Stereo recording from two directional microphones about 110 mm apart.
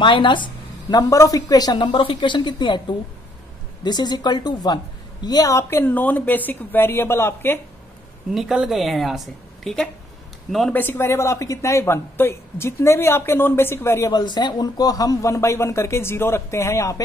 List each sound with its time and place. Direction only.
0.0 s a woman's voice: 45° left (ahead or behind)
3.8 s a woman's voice: 40° left (ahead or behind); by 7.6 s 20° left (ahead or behind)
8.3 s a woman's voice: 5° right (ahead or behind)
10.7 s a woman's voice: 20° left (ahead or behind)
14.1 s a woman's voice: 40° left (ahead or behind)